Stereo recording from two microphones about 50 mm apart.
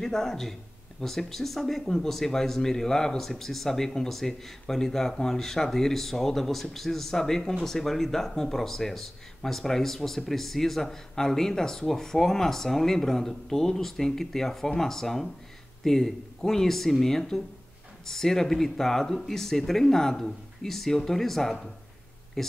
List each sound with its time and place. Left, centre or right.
0.0 s speech: centre